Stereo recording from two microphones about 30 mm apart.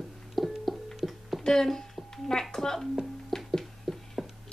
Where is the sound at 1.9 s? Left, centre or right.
Centre.